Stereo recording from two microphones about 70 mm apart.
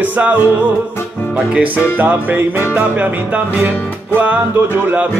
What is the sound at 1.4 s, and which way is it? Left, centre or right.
Music, centre.